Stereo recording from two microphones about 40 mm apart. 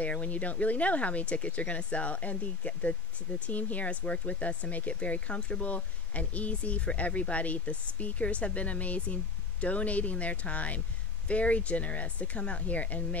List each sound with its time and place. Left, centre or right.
0.0 s speech: left